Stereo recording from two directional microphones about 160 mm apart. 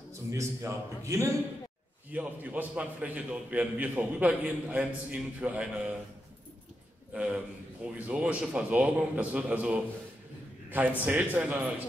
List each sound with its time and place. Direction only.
0.3 s a man's voice: 20° right (ahead or behind)
7.2 s a man's voice: 5° right (ahead or behind)